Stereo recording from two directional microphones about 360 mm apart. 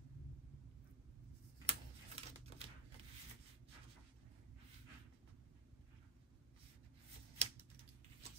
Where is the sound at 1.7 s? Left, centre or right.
Centre.